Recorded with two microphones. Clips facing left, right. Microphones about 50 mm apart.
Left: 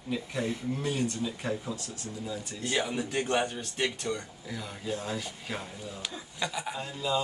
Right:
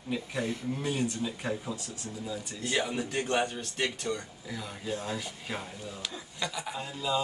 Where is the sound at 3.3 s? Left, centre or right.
Centre.